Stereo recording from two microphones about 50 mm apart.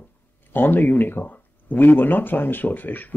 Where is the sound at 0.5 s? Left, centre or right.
Left.